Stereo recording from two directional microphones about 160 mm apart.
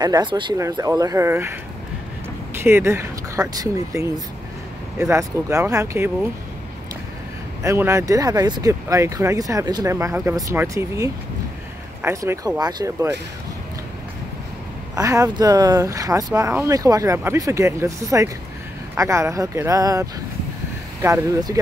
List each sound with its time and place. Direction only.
0.0 s speech: 25° right (ahead or behind)
2.6 s speech: 15° right (ahead or behind)
7.6 s speech: 15° right (ahead or behind)
15.0 s speech: 20° right (ahead or behind)